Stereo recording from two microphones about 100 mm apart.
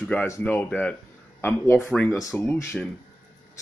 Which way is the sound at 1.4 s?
25° left (ahead or behind).